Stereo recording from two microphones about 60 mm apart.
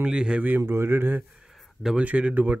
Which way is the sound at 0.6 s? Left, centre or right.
Right.